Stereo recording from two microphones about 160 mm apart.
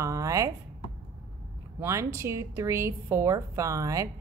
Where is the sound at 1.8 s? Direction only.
15° right (ahead or behind).